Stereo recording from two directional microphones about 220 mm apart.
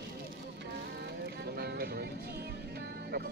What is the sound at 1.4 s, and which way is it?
Music, 45° right (ahead or behind).